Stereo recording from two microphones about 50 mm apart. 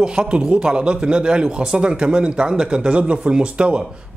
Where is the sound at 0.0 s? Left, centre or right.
Centre.